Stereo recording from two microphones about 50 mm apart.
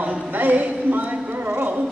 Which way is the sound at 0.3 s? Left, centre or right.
Right.